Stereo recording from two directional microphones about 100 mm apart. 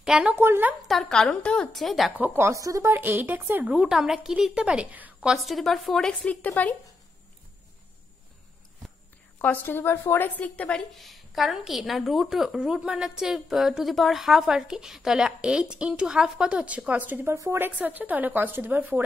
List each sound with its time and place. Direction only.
0.0 s a woman's voice: 5° right (ahead or behind)
0.3 s a woman's voice: 20° right (ahead or behind)
0.8 s a woman's voice: 5° left (ahead or behind)
2.1 s speech: 20° right (ahead or behind)
2.9 s speech: 20° right (ahead or behind)
3.7 s a woman's voice: 5° right (ahead or behind)
5.3 s a woman's voice: centre (ahead or behind); by 6.7 s 15° left (ahead or behind)
9.4 s a woman's voice: 20° left (ahead or behind)
10.9 s a woman's voice: centre (ahead or behind); by 19.0 s 20° right (ahead or behind)